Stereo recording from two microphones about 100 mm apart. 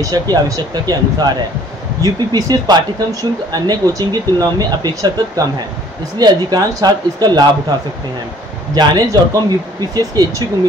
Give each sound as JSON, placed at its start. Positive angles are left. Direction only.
{"t": 0.0, "sound": "speech", "side_deg": -35}
{"t": 8.7, "sound": "speech", "side_deg": -40}